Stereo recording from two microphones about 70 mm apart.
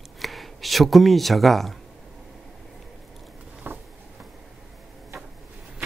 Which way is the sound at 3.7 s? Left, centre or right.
Right.